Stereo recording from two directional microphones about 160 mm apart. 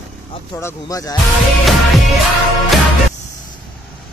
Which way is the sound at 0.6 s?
20° left (ahead or behind).